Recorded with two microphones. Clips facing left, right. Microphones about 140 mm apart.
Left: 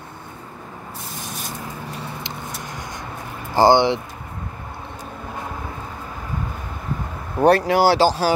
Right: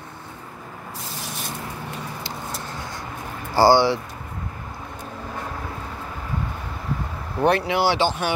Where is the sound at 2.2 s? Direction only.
15° left (ahead or behind).